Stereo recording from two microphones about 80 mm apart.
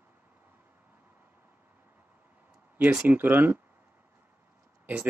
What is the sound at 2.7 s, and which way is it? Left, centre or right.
Speech, centre.